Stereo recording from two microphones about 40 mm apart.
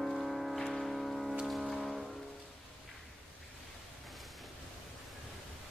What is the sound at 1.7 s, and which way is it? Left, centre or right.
Vehicle, centre.